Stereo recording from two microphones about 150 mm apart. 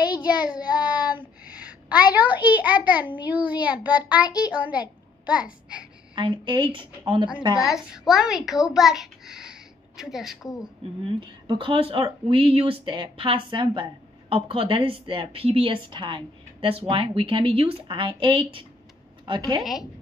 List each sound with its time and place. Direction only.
0.0 s child singing: 25° left (ahead or behind)
1.4 s a sound: 10° right (ahead or behind)
2.3 s a child's voice: 10° right (ahead or behind)
4.2 s a child's voice: 25° left (ahead or behind)
4.5 s a child's voice: 10° right (ahead or behind)
6.1 s a woman's voice: 30° right (ahead or behind)
7.7 s a child's voice: 5° right (ahead or behind)
11.1 s a woman's voice: 35° right (ahead or behind)
19.6 s speech: centre (ahead or behind)